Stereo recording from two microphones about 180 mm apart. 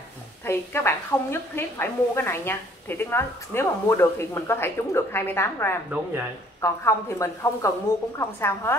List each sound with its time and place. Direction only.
0.5 s a woman's voice: 15° left (ahead or behind)